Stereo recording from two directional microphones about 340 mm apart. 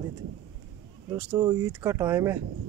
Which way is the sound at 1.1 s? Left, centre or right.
Centre.